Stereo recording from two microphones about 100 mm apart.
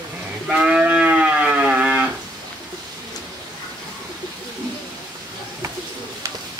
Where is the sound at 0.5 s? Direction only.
10° right (ahead or behind).